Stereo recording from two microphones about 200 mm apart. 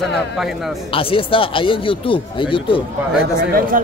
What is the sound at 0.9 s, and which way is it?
Speech, 25° left (ahead or behind).